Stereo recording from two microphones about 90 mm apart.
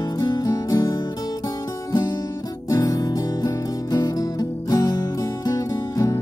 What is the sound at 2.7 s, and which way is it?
Music, 45° left (ahead or behind).